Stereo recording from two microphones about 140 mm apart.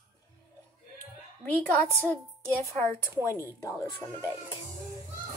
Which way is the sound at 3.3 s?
20° left (ahead or behind).